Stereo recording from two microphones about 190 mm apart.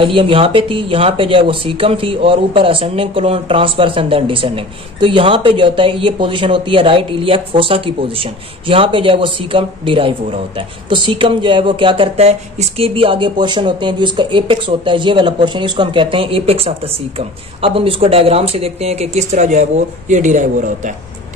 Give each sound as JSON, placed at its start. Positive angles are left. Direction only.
{"t": 0.0, "sound": "speech", "side_deg": -30}